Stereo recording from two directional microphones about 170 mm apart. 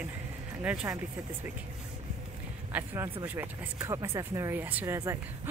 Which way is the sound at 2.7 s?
15° right (ahead or behind).